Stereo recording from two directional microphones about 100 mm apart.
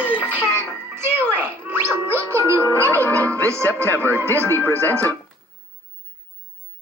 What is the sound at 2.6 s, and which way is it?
Music, 20° left (ahead or behind).